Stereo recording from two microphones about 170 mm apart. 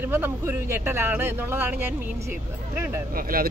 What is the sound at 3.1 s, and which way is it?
Speech, 60° right (ahead or behind).